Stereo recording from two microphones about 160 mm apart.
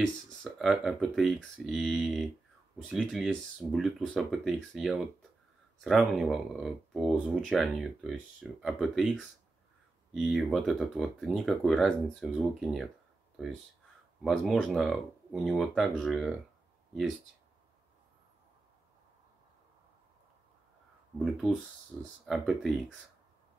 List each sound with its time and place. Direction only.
0.0 s speech: centre (ahead or behind)
14.2 s speech: centre (ahead or behind)
22.2 s speech: centre (ahead or behind)